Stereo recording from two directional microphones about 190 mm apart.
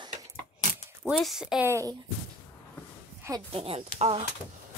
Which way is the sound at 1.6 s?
15° right (ahead or behind).